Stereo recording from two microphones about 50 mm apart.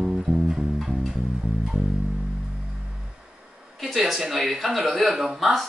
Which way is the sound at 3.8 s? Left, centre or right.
Centre.